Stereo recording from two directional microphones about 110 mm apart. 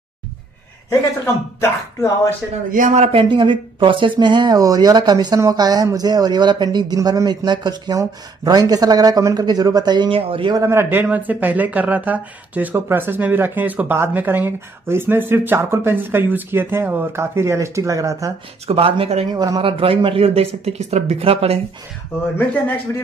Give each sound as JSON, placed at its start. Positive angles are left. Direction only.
{"t": 0.8, "sound": "speech", "side_deg": 25}
{"t": 2.9, "sound": "speech", "side_deg": -75}
{"t": 3.2, "sound": "speech", "side_deg": -45}
{"t": 10.5, "sound": "speech", "side_deg": -25}
{"t": 18.7, "sound": "a man's voice", "side_deg": -60}
{"t": 19.3, "sound": "speech", "side_deg": -35}
{"t": 19.6, "sound": "a man's voice", "side_deg": -55}
{"t": 20.2, "sound": "speech", "side_deg": -70}